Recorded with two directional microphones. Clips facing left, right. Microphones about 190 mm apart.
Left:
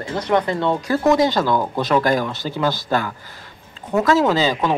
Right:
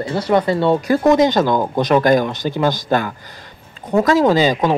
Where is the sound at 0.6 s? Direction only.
15° right (ahead or behind).